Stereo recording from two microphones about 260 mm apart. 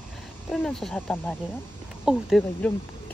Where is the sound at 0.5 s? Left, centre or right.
Centre.